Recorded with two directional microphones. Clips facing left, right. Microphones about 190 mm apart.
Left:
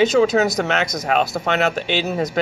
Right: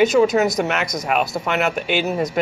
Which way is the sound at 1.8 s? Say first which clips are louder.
Right 1 dB; 30° left (ahead or behind).